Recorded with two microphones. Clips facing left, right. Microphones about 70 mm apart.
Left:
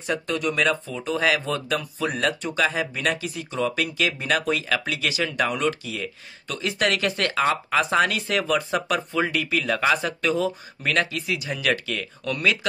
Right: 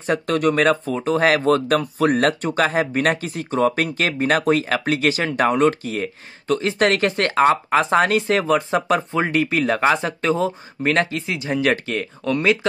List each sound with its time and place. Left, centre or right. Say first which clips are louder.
0.0 s speech: right 6 dB; right